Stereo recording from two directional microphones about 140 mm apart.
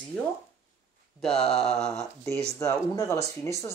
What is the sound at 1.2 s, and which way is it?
Mantra, 5° left (ahead or behind).